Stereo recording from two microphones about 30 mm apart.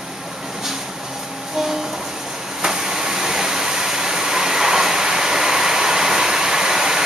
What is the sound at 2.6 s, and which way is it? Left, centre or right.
Vehicle, centre.